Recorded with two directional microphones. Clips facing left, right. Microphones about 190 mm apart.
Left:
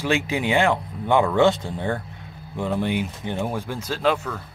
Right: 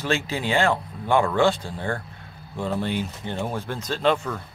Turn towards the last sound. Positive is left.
turn(degrees=5)  # may be behind; listen again after turning